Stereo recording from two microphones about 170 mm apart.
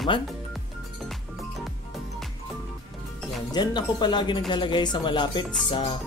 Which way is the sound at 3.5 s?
25° left (ahead or behind).